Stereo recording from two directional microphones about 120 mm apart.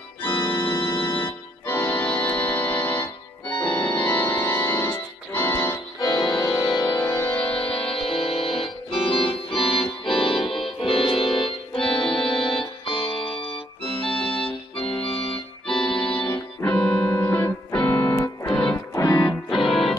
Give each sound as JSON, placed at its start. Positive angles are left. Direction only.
{"t": 0.4, "sound": "organ", "side_deg": 20}
{"t": 5.9, "sound": "music", "side_deg": 35}
{"t": 6.9, "sound": "music", "side_deg": 20}
{"t": 7.9, "sound": "organ", "side_deg": 50}
{"t": 10.5, "sound": "music", "side_deg": 50}
{"t": 11.8, "sound": "music", "side_deg": 5}
{"t": 12.4, "sound": "music", "side_deg": 45}
{"t": 13.8, "sound": "organ", "side_deg": 5}
{"t": 18.5, "sound": "music", "side_deg": 10}
{"t": 18.9, "sound": "music", "side_deg": 30}
{"t": 19.5, "sound": "music", "side_deg": 0}